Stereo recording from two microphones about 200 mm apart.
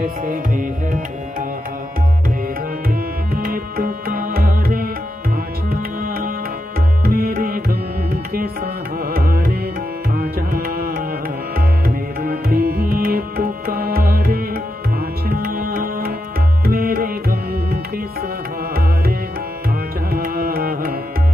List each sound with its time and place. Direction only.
0.0 s music: 45° right (ahead or behind)
3.3 s music: 45° right (ahead or behind)
7.1 s tabla: 45° right (ahead or behind)
9.1 s music: 50° right (ahead or behind)
10.1 s tabla: 45° right (ahead or behind)
12.2 s tabla: 50° right (ahead or behind)
20.1 s carnatic music: 45° right (ahead or behind)